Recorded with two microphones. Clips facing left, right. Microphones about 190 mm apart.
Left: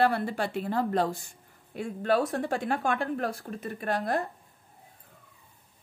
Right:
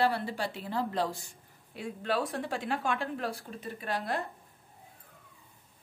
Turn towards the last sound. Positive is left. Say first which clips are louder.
# left 5 dB
turn(degrees=50)  # may be behind; listen again after turning